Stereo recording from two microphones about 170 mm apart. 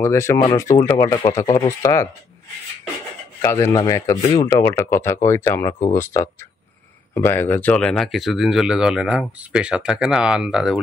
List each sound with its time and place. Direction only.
0.0 s speech: 15° left (ahead or behind)
3.3 s speech: 20° left (ahead or behind); by 10.8 s 5° right (ahead or behind)